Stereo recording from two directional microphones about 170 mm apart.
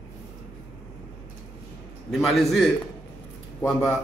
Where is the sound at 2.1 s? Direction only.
Centre (ahead or behind).